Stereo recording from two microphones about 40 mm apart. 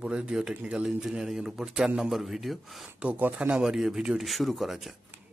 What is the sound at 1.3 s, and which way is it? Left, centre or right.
A man's voice, centre.